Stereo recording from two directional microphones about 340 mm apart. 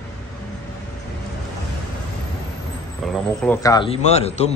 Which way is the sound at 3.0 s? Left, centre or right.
Centre.